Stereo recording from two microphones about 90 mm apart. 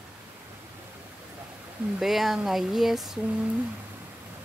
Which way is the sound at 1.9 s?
5° right (ahead or behind).